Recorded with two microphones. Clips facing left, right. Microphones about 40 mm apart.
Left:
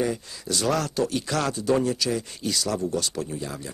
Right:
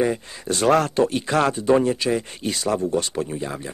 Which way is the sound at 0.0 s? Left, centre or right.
Right.